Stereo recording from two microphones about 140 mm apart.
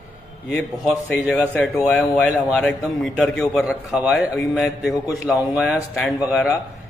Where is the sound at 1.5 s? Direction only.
10° left (ahead or behind).